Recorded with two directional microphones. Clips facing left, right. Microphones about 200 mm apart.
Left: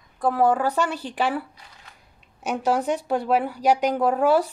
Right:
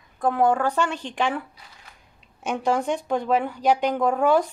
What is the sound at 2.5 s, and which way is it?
A woman's voice, 5° left (ahead or behind).